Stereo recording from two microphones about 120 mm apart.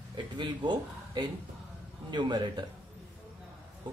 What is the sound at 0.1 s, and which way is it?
A man's voice, 40° right (ahead or behind).